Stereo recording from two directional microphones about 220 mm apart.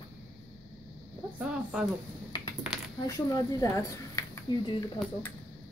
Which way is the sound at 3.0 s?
15° left (ahead or behind).